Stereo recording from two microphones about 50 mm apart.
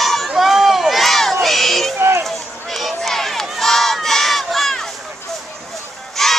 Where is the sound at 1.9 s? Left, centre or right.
Right.